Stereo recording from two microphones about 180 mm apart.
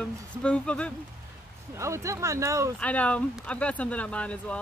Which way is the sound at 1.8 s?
15° right (ahead or behind).